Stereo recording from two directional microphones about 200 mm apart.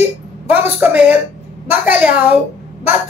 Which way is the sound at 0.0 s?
5° right (ahead or behind).